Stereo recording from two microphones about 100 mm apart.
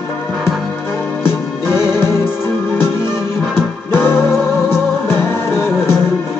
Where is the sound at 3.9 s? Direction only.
25° left (ahead or behind).